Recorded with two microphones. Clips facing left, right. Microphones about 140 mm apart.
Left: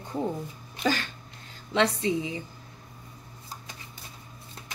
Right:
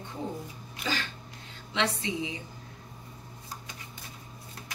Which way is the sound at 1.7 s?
35° left (ahead or behind).